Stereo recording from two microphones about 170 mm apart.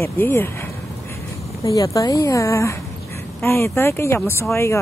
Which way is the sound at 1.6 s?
20° left (ahead or behind).